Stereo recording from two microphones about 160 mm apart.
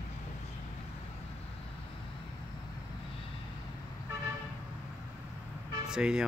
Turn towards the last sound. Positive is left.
turn(degrees=-5)  # may be behind; listen again after turning